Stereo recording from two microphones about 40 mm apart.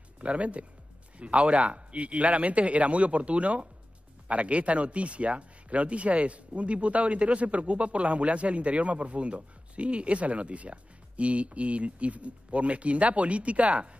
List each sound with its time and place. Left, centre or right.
0.2 s speech: right